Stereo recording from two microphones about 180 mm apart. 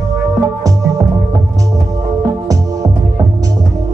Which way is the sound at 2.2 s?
20° right (ahead or behind).